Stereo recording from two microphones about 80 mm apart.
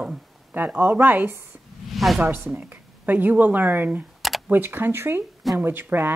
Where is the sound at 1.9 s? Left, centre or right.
Centre.